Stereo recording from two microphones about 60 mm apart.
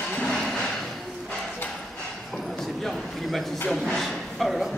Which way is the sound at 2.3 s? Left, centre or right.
Centre.